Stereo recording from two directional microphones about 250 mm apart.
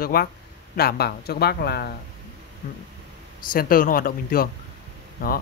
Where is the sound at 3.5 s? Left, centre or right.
Left.